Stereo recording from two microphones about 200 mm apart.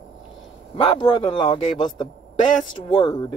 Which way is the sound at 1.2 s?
20° left (ahead or behind).